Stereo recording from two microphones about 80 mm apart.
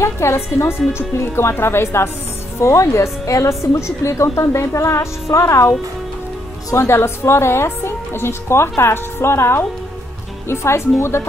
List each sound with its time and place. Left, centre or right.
0.0 s a woman's voice: left
6.7 s a woman's voice: left